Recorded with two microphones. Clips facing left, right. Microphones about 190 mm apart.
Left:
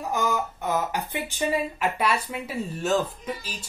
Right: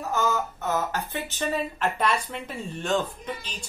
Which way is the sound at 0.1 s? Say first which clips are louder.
Even; 15° left (ahead or behind).